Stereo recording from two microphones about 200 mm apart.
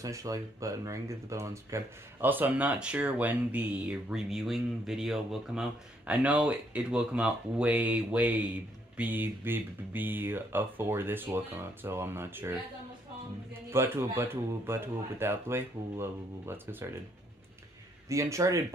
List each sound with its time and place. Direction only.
0.0 s speech: 15° right (ahead or behind)
18.0 s speech: 15° right (ahead or behind)